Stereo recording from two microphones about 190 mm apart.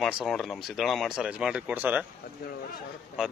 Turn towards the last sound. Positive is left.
turn(degrees=-5)  # may be behind; listen again after turning